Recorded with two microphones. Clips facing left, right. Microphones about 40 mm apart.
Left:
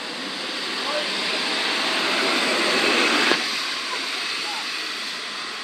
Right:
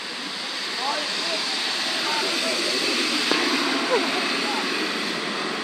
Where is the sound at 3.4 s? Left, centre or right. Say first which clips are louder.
Right 4 dB; centre.